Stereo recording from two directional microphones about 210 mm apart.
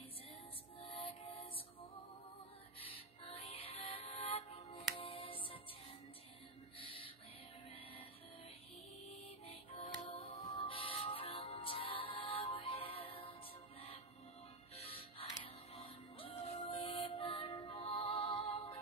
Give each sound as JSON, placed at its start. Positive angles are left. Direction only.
{"t": 0.7, "sound": "music", "side_deg": 25}
{"t": 2.8, "sound": "music", "side_deg": 25}
{"t": 6.8, "sound": "music", "side_deg": 25}
{"t": 9.5, "sound": "music", "side_deg": 25}
{"t": 14.8, "sound": "music", "side_deg": 25}